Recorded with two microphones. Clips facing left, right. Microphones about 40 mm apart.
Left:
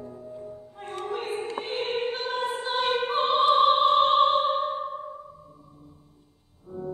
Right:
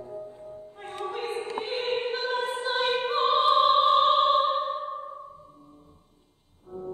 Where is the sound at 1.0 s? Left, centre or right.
Centre.